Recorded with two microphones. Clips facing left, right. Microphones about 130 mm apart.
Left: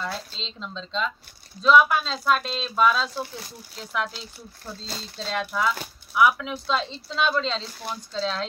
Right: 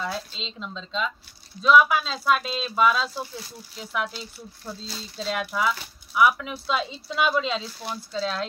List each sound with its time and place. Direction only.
0.0 s speech: 5° right (ahead or behind)
5.1 s speech: 5° right (ahead or behind)